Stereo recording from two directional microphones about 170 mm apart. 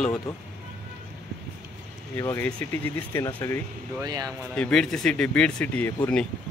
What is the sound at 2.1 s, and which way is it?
Speech, 15° left (ahead or behind).